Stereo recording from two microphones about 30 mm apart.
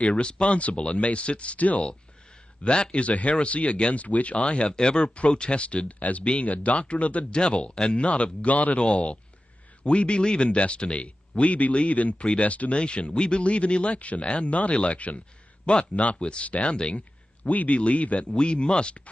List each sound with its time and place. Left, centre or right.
0.1 s speech: left
2.6 s speech: left
3.1 s speech: left
4.6 s speech: left
7.2 s speech: left
8.7 s speech: left
12.7 s speech: left
13.9 s speech: left
14.2 s speech: left
15.6 s a man's voice: left
16.4 s a man's voice: left
17.7 s speech: left
18.3 s speech: left